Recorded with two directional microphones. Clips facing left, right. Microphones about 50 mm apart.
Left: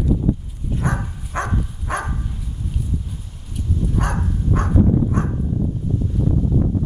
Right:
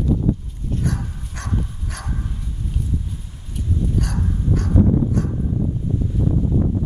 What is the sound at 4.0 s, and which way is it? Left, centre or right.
Dog, left.